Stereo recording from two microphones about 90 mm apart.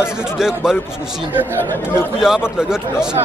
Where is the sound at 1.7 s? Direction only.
25° left (ahead or behind).